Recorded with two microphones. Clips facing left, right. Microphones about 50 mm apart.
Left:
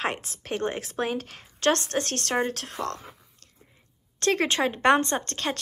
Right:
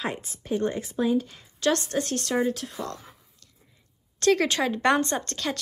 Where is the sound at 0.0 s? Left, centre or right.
Left.